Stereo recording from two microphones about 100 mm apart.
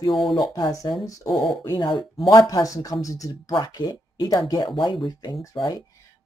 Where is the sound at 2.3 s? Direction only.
35° left (ahead or behind).